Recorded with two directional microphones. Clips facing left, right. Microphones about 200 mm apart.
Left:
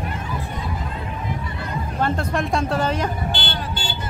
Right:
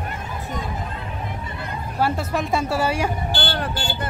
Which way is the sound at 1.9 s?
5° right (ahead or behind).